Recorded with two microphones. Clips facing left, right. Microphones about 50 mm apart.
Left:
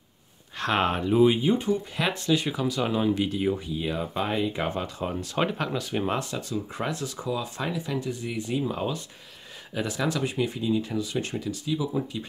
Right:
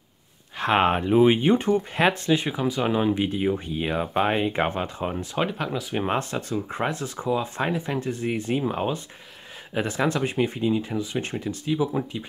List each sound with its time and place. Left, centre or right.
0.6 s speech: right
1.4 s speech: right
3.5 s speech: right
5.4 s speech: centre
5.9 s speech: right